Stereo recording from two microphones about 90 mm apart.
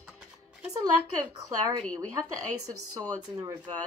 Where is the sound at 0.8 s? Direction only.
50° right (ahead or behind).